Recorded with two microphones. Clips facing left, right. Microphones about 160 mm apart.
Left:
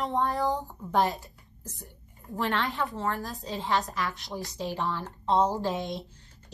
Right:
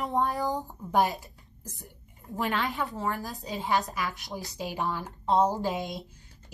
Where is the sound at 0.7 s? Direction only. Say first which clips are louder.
Right 1 dB; 20° right (ahead or behind).